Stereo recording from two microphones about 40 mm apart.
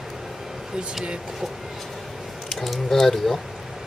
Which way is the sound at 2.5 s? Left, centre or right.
Centre.